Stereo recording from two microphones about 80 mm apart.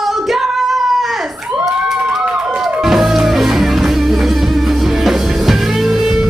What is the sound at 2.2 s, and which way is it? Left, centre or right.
Music, centre.